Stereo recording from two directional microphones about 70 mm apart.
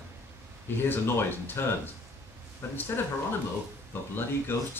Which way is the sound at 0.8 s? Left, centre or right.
Left.